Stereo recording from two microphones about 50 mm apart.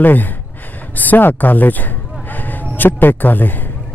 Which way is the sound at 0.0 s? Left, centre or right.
Left.